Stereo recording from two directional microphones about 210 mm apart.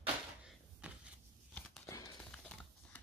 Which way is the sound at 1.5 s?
5° left (ahead or behind).